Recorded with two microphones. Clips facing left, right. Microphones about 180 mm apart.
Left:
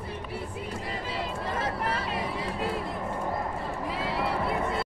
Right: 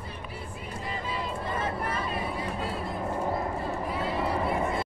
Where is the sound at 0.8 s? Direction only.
75° left (ahead or behind).